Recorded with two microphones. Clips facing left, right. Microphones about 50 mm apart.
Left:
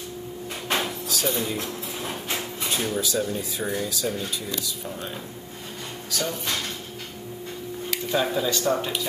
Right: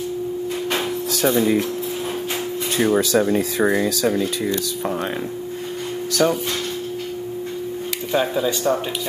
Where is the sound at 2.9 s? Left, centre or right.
Right.